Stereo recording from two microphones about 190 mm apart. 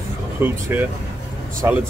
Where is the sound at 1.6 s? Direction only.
15° right (ahead or behind).